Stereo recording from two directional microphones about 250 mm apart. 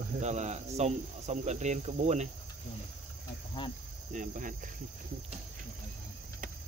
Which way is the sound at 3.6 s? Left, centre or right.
Centre.